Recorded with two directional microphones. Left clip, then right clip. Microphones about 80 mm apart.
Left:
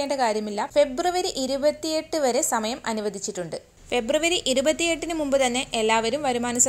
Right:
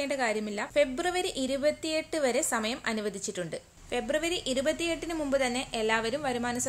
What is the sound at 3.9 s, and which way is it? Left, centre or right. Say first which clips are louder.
A woman's voice: left 7 dB; left.